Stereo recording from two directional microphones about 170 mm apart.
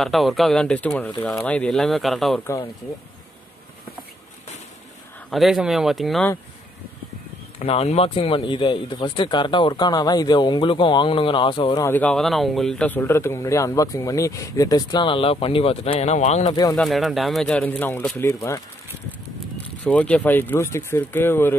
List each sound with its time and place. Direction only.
0.0 s speech: centre (ahead or behind)
5.3 s speech: centre (ahead or behind)
7.5 s speech: 35° left (ahead or behind)
11.8 s speech: 10° left (ahead or behind); by 16.5 s 40° left (ahead or behind)
16.7 s speech: centre (ahead or behind); by 18.6 s 20° left (ahead or behind)
19.8 s speech: 5° left (ahead or behind)